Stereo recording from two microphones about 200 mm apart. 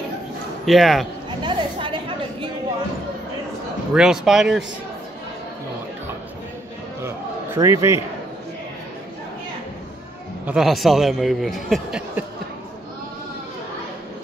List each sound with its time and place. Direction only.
0.7 s a man's voice: centre (ahead or behind)
1.4 s chatter: 25° right (ahead or behind)
3.9 s a man's voice: 5° right (ahead or behind)
7.0 s a sound: 15° right (ahead or behind)
10.4 s a man's voice: 5° right (ahead or behind)